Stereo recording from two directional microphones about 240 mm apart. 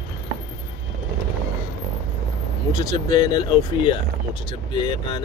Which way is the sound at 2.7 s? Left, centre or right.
Centre.